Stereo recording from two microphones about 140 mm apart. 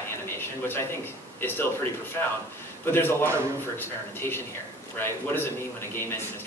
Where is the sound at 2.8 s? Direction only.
15° left (ahead or behind).